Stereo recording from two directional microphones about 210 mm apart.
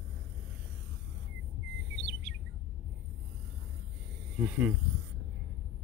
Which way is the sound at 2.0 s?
60° right (ahead or behind).